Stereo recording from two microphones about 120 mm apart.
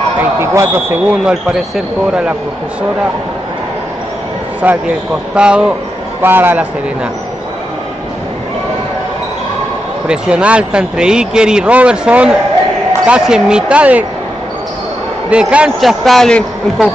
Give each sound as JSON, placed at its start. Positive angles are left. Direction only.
{"t": 0.2, "sound": "a man's voice", "side_deg": -20}
{"t": 4.6, "sound": "a man's voice", "side_deg": -15}
{"t": 10.0, "sound": "a man's voice", "side_deg": -10}
{"t": 15.2, "sound": "a man's voice", "side_deg": -10}